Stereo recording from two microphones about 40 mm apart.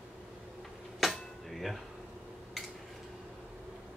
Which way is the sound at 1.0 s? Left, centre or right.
Centre.